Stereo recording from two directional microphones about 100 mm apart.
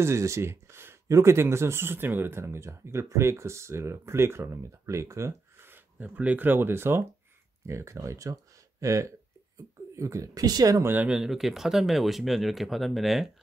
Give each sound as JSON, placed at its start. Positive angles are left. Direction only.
{"t": 0.0, "sound": "speech", "side_deg": -30}
{"t": 10.8, "sound": "speech", "side_deg": -20}
{"t": 11.1, "sound": "speech", "side_deg": -5}